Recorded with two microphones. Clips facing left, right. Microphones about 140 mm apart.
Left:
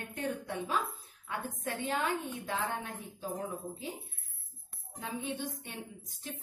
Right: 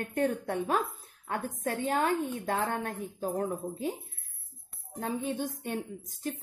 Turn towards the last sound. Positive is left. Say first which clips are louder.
# right 7 dB
turn(degrees=-45)  # may be behind; listen again after turning